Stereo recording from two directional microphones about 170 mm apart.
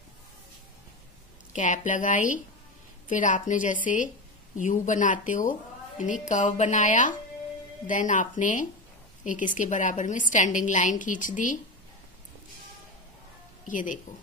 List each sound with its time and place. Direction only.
1.5 s a woman's voice: 45° left (ahead or behind)
13.7 s a woman's voice: 50° left (ahead or behind)